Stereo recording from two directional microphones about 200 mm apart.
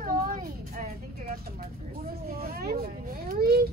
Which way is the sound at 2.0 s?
50° right (ahead or behind).